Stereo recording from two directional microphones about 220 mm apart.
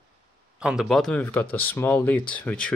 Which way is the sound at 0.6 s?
Centre (ahead or behind).